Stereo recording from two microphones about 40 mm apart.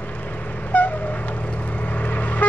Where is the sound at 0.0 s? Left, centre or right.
Left.